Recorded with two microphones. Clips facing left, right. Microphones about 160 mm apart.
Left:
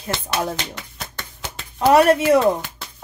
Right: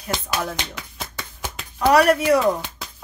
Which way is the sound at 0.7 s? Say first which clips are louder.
Right 1 dB; centre (ahead or behind).